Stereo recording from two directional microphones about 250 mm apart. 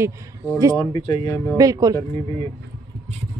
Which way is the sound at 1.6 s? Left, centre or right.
Centre.